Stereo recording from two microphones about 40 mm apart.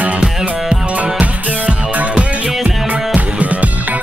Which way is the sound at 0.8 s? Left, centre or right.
Right.